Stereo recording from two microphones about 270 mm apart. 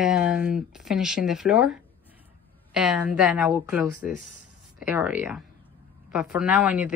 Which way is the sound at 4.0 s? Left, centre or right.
Left.